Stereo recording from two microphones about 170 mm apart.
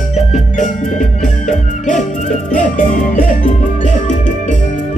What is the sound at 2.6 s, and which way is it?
Music, 50° left (ahead or behind).